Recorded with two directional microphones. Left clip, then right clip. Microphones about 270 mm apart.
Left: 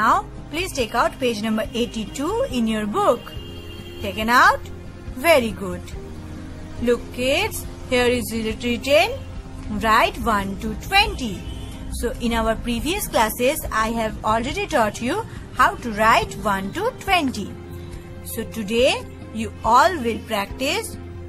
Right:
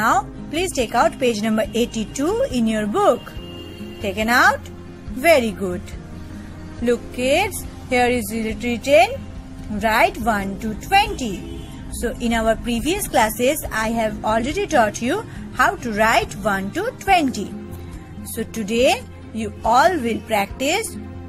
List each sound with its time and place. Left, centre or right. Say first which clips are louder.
0.0 s a woman's voice: even; centre
4.2 s a woman's voice: even; centre
6.8 s a woman's voice: right 1 dB; centre